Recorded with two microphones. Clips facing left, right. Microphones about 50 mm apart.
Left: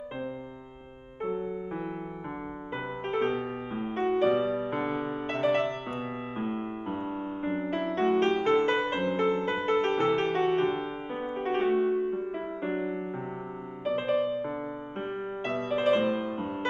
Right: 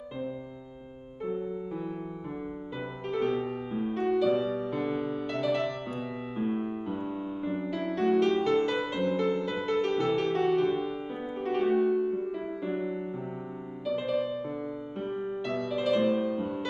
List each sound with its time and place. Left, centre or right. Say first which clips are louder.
3.1 s music: even; left